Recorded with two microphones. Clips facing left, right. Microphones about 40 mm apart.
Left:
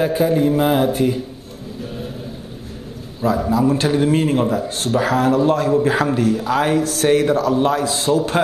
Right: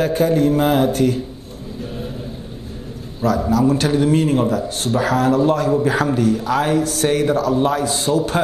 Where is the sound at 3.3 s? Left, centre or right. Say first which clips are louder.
Even; left.